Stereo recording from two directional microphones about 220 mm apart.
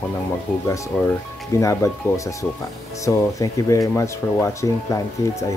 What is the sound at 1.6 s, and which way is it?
Speech, 15° left (ahead or behind).